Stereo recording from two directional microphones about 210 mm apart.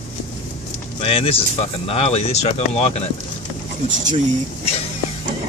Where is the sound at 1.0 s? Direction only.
25° left (ahead or behind).